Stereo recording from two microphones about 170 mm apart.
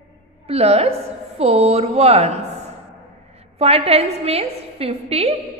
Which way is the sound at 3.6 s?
35° right (ahead or behind).